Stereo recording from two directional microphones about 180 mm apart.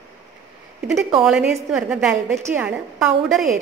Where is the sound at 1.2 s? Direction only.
5° right (ahead or behind).